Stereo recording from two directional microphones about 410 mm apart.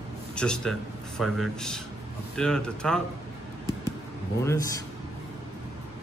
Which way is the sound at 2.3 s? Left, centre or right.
Centre.